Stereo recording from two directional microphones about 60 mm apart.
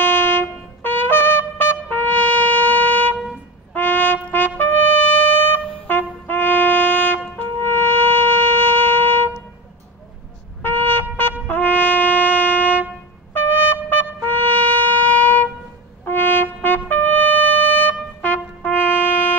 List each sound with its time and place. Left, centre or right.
0.0 s trumpet: left
10.6 s wind instrument: left
11.4 s brass instrument: left
13.3 s trumpet: left